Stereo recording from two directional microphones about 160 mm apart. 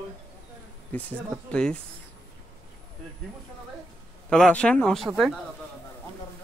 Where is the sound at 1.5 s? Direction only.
5° left (ahead or behind).